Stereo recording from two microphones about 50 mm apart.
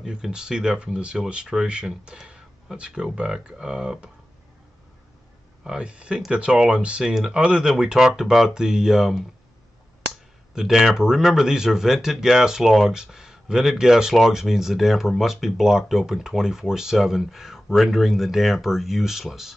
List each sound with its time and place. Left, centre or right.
0.0 s speech: centre
2.2 s a sound: centre
3.2 s speech: centre
5.6 s speech: centre
10.5 s speech: centre